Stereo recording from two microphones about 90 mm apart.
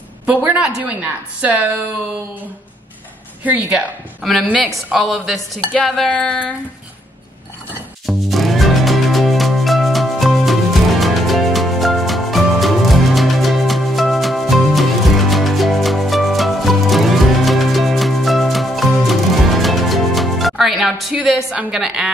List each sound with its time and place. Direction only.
0.3 s a woman's voice: 15° right (ahead or behind)
3.4 s a woman's voice: 15° right (ahead or behind)
4.2 s a woman's voice: centre (ahead or behind)
5.7 s a sound: 5° left (ahead or behind)
8.1 s music: centre (ahead or behind)
21.3 s a woman's voice: centre (ahead or behind)